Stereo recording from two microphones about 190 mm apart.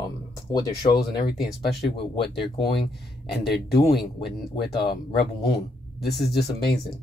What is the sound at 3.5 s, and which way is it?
Speech, 55° left (ahead or behind).